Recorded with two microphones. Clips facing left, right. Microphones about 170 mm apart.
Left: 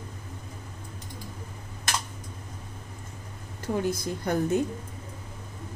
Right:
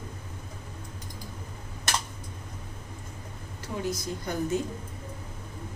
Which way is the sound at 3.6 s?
55° left (ahead or behind).